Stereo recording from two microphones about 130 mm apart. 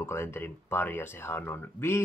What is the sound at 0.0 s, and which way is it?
Speech, 20° left (ahead or behind).